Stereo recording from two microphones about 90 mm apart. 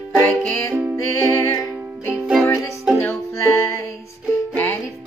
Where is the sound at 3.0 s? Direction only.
30° left (ahead or behind).